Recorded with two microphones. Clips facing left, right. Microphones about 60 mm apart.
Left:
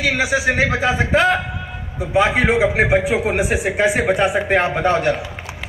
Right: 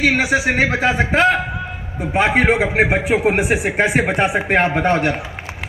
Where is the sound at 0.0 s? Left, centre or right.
Right.